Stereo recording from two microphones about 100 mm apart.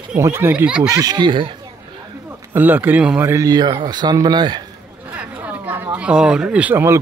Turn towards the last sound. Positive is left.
turn(degrees=-25)  # may be behind; listen again after turning